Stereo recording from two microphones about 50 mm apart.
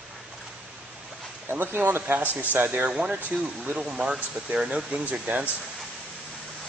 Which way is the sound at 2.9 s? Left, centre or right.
Centre.